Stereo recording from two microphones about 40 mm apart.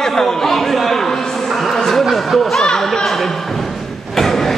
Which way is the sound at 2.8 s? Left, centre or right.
Centre.